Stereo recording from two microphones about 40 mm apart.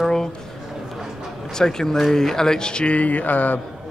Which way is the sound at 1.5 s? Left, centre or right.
Centre.